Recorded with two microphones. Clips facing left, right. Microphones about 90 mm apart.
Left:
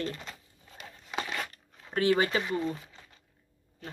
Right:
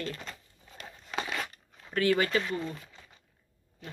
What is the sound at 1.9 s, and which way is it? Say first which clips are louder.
Speech: left 1 dB; 25° left (ahead or behind).